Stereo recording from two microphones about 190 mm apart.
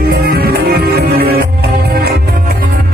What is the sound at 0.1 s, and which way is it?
Music, 55° right (ahead or behind).